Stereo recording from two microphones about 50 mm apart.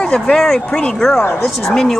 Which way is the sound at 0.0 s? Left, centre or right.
Centre.